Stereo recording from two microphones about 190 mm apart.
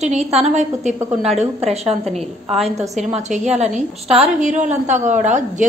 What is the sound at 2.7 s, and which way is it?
A woman's voice, 35° right (ahead or behind).